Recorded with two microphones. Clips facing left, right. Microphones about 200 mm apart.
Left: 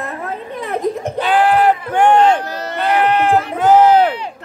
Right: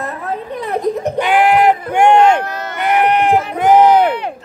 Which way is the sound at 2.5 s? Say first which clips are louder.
Even; 30° left (ahead or behind).